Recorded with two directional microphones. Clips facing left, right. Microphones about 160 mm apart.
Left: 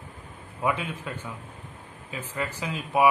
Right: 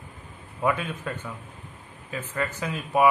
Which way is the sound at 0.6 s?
10° left (ahead or behind).